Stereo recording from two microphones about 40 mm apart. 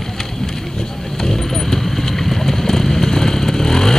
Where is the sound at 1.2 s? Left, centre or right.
Centre.